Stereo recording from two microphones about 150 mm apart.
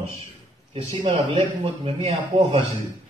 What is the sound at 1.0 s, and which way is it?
A man's voice, 45° right (ahead or behind).